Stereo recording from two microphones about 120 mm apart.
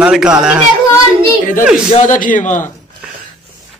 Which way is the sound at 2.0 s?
90° left.